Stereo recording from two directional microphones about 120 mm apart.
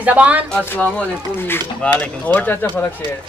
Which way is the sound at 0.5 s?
10° left (ahead or behind).